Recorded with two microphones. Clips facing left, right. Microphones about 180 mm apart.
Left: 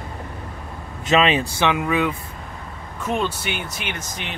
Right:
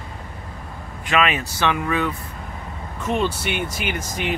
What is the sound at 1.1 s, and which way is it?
Speech, 25° left (ahead or behind).